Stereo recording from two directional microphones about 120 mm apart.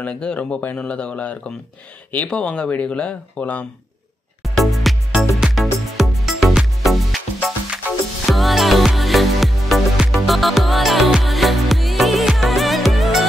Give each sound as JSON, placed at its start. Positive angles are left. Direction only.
{"t": 0.0, "sound": "speech", "side_deg": 10}
{"t": 4.4, "sound": "music", "side_deg": 0}
{"t": 8.3, "sound": "music", "side_deg": 0}